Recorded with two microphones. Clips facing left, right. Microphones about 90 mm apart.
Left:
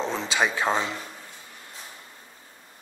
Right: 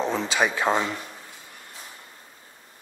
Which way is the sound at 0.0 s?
5° right (ahead or behind).